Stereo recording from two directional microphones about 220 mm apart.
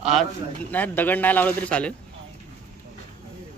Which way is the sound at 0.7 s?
5° left (ahead or behind).